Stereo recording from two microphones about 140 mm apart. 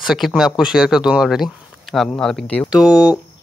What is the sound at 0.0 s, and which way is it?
Speech, 5° right (ahead or behind).